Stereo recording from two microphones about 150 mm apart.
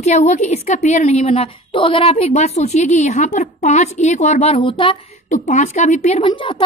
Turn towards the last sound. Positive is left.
turn(degrees=35)  # may be behind; listen again after turning